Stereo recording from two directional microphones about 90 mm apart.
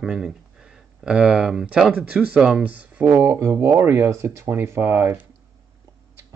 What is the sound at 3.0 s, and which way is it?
Speech, 30° right (ahead or behind).